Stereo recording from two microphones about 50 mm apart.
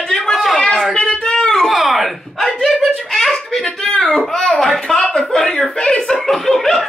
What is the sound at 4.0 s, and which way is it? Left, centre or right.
Speech, centre.